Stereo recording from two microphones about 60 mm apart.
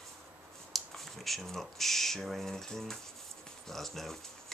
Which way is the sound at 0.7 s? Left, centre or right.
Centre.